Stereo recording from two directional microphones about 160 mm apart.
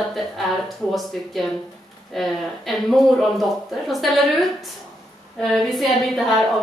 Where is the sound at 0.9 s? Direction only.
Centre (ahead or behind).